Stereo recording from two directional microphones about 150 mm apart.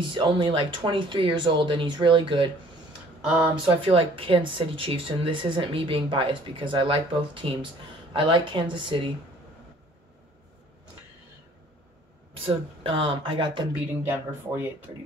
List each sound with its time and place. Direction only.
0.1 s speech: 35° right (ahead or behind)
3.3 s speech: 5° right (ahead or behind)
3.6 s speech: 40° right (ahead or behind)
12.4 s speech: 35° right (ahead or behind)
14.0 s speech: 15° right (ahead or behind)